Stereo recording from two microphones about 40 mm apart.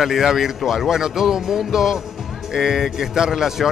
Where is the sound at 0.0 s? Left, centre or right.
Centre.